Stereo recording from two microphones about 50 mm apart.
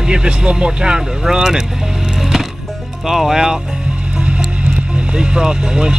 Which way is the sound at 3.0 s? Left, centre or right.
Centre.